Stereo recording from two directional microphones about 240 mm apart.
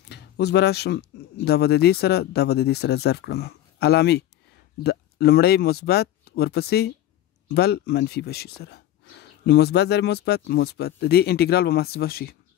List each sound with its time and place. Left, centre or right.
0.1 s speech: left